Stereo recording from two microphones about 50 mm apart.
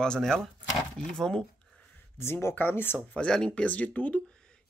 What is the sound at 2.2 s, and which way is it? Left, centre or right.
Speech, left.